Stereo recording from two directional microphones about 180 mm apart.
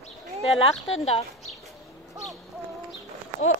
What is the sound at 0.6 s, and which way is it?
Speech, 35° left (ahead or behind).